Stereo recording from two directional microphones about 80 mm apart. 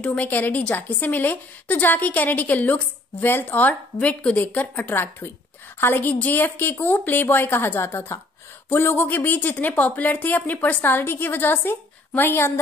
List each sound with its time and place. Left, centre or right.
0.0 s a woman's voice: centre